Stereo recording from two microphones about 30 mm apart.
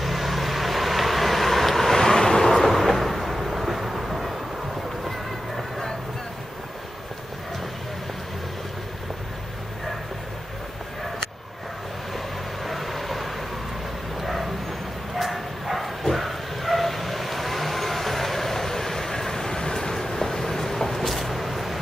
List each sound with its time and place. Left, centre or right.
0.0 s vehicle: centre
2.0 s vehicle: centre
2.5 s vehicle: centre
12.6 s vehicle: centre
14.2 s bow-wow: centre
16.0 s vehicle: centre